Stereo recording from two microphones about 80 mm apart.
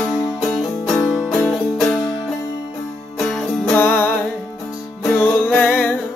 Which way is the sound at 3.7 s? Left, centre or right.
Left.